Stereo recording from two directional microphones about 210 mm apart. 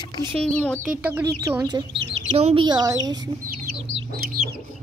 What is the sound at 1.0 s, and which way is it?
Speech, 10° right (ahead or behind).